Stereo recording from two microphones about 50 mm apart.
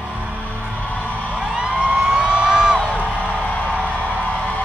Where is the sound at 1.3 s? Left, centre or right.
Centre.